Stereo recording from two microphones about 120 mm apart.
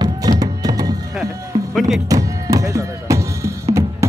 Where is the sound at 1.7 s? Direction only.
Centre (ahead or behind).